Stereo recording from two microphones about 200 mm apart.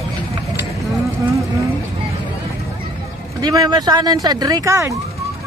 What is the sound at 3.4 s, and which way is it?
Speech, 20° right (ahead or behind).